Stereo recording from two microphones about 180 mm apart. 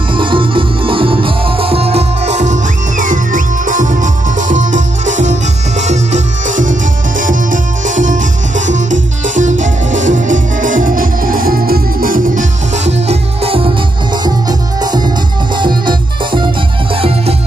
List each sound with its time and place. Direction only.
0.1 s music: 30° right (ahead or behind)
14.8 s music: 20° right (ahead or behind)